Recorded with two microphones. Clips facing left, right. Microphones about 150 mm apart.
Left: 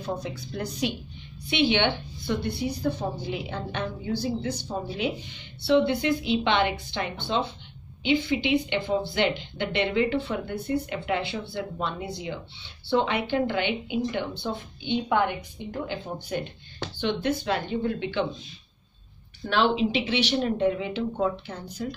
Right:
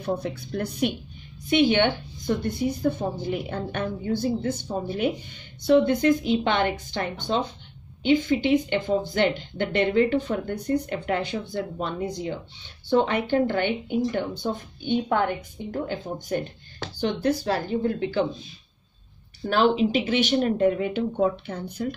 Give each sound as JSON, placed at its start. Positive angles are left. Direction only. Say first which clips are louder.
{"t": 0.0, "sound": "a woman's voice", "louder": "right 4 dB", "side_deg": -60}
{"t": 1.5, "sound": "a woman's voice", "louder": "right 4 dB", "side_deg": -45}
{"t": 19.4, "sound": "a woman's voice", "louder": "right 3 dB", "side_deg": -40}